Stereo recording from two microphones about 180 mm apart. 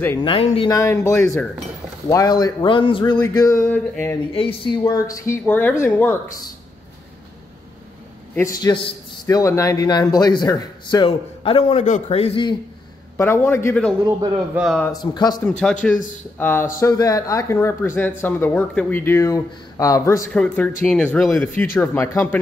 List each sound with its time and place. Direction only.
0.2 s speech: 30° left (ahead or behind)
0.7 s a man's voice: 15° left (ahead or behind)
4.3 s a man's voice: 30° left (ahead or behind); by 6.3 s 10° left (ahead or behind)
8.4 s a man's voice: 15° left (ahead or behind)
13.2 s speech: 15° left (ahead or behind)
14.0 s a man's voice: 25° right (ahead or behind)
14.5 s speech: 5° right (ahead or behind)
14.9 s a man's voice: 20° left (ahead or behind)
15.8 s speech: 5° left (ahead or behind)